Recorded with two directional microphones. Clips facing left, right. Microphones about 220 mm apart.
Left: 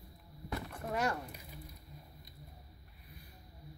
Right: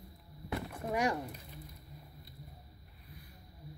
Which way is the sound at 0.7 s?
10° right (ahead or behind).